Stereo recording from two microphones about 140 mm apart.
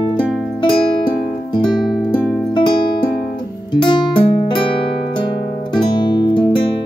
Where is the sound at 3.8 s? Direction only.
35° left (ahead or behind).